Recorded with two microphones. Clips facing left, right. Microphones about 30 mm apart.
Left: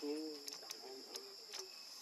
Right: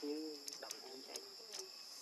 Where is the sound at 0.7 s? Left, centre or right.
Centre.